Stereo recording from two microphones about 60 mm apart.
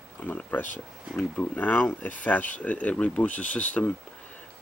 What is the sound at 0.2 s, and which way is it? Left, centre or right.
Speech, left.